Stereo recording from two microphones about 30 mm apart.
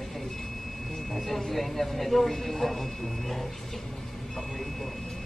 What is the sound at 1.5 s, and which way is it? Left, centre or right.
Speech, centre.